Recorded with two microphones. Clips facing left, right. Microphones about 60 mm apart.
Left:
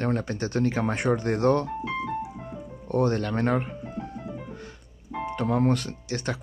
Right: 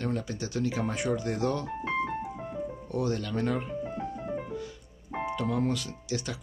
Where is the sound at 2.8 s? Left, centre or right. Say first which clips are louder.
Left 8 dB; left.